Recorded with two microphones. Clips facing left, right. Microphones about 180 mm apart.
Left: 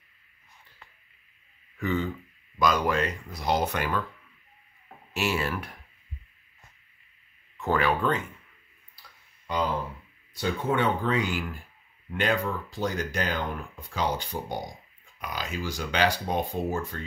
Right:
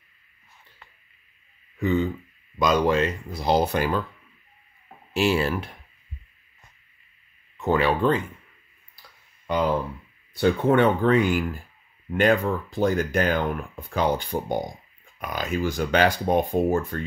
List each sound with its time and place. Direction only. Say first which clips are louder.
2.6 s speech: right 4 dB; 25° right (ahead or behind)
5.1 s speech: right 6 dB; 30° right (ahead or behind)
7.5 s speech: right 4 dB; 20° right (ahead or behind)
10.3 s speech: right 8 dB; 60° right (ahead or behind)